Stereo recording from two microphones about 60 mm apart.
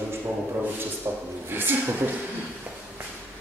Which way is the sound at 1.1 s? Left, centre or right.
Right.